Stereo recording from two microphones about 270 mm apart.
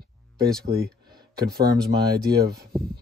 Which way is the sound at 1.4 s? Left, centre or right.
Right.